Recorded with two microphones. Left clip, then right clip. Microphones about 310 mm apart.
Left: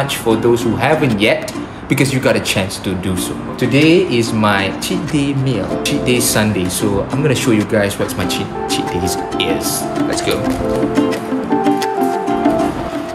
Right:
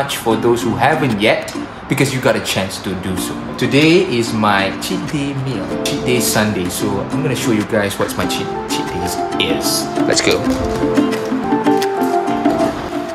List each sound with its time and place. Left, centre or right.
0.3 s speech: centre
3.7 s speech: centre
7.2 s speech: centre
10.0 s speech: right
11.6 s music: centre